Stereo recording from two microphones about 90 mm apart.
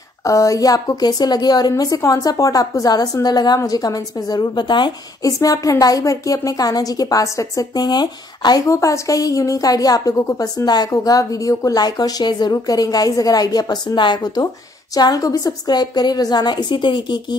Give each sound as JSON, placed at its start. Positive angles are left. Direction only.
{"t": 0.2, "sound": "a woman's voice", "side_deg": 35}
{"t": 5.2, "sound": "a woman's voice", "side_deg": 40}
{"t": 8.6, "sound": "a woman's voice", "side_deg": 35}
{"t": 10.6, "sound": "a woman's voice", "side_deg": 50}